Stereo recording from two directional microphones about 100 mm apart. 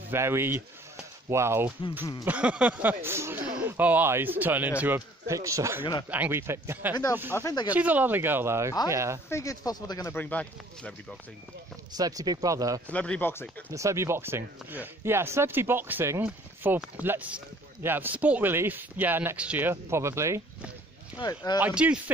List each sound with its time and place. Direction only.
0.1 s speech: 25° right (ahead or behind)
2.2 s speech: 15° right (ahead or behind)
5.2 s speech: 30° right (ahead or behind)
6.0 s speech: 15° right (ahead or behind)
7.3 s speech: 25° left (ahead or behind)
7.7 s speech: 15° right (ahead or behind)
9.3 s speech: 30° left (ahead or behind)
10.1 s speech: 15° left (ahead or behind)
12.0 s speech: 40° right (ahead or behind)
12.8 s speech: 10° left (ahead or behind)
13.7 s speech: 30° right (ahead or behind); by 19.7 s 15° right (ahead or behind)
19.7 s speech: 25° right (ahead or behind)
21.2 s speech: 45° left (ahead or behind)
21.5 s speech: 15° right (ahead or behind)